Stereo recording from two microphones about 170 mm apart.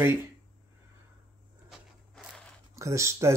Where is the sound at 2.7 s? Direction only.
15° right (ahead or behind).